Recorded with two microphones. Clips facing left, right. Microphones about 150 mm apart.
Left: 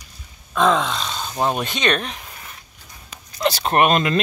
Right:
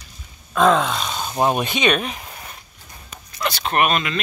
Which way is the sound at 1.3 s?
15° right (ahead or behind).